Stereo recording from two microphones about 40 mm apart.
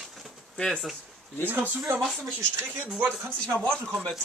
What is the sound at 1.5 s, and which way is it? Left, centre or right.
Speech, right.